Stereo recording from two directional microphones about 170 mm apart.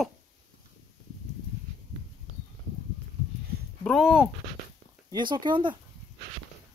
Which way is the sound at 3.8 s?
Centre (ahead or behind).